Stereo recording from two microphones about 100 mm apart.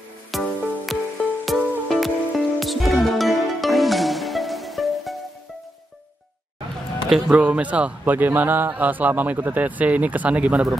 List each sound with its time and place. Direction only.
0.3 s music: centre (ahead or behind)
7.2 s speech: 10° right (ahead or behind)